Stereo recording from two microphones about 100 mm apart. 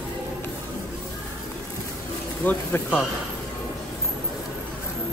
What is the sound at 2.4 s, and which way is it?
Speech, 15° left (ahead or behind).